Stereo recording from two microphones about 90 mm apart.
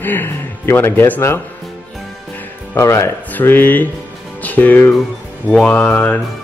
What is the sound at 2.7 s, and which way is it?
A man's voice, 30° left (ahead or behind).